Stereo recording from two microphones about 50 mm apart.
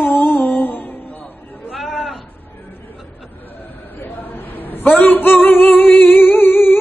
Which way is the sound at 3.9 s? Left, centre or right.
Left.